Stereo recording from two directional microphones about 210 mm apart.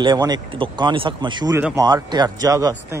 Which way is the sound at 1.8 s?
20° right (ahead or behind).